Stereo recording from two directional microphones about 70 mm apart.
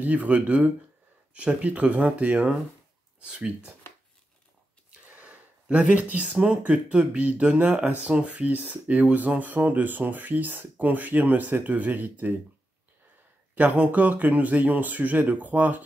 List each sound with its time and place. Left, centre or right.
0.0 s speech: right
5.1 s speech: centre
13.6 s speech: right